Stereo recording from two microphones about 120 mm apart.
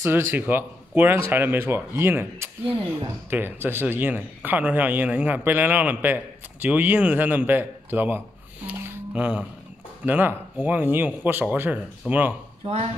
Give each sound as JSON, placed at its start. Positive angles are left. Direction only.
{"t": 0.0, "sound": "speech", "side_deg": -20}
{"t": 12.6, "sound": "speech", "side_deg": -50}